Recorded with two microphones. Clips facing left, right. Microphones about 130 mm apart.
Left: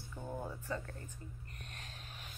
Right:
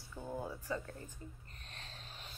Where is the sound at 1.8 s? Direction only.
30° right (ahead or behind).